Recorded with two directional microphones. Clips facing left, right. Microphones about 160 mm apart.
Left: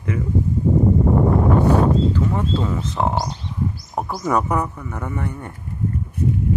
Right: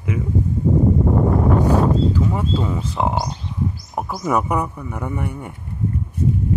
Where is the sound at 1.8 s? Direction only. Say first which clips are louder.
Even; 10° right (ahead or behind).